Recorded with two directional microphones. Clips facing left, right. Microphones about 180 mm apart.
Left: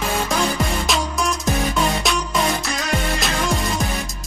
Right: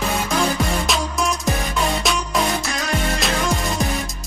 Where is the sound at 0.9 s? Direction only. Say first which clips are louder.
Even; centre (ahead or behind).